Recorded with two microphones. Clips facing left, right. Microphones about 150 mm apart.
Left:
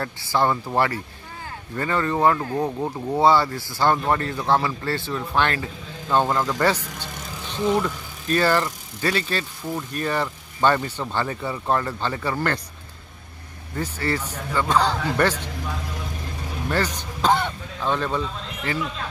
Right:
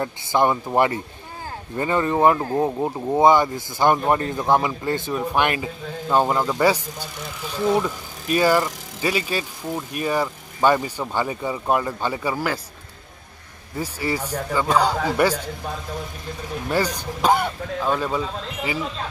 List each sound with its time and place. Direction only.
0.0 s speech: 20° right (ahead or behind)
13.7 s speech: 10° right (ahead or behind)
16.6 s speech: 10° right (ahead or behind)